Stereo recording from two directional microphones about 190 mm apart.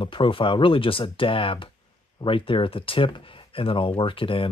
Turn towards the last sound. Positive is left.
turn(degrees=25)  # may be behind; listen again after turning